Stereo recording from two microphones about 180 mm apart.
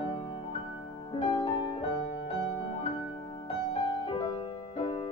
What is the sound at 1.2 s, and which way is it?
Music, 25° left (ahead or behind).